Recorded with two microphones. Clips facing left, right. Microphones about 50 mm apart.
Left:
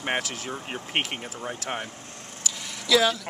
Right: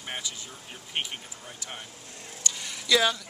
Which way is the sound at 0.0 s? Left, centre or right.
Left.